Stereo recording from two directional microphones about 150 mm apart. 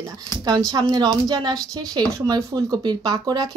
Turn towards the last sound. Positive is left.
turn(degrees=-25)  # may be behind; listen again after turning